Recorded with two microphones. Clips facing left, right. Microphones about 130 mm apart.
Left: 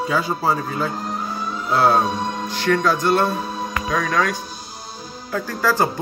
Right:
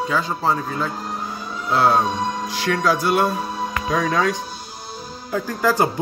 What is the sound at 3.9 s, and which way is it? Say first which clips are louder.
Speech: right 1 dB; 15° right (ahead or behind).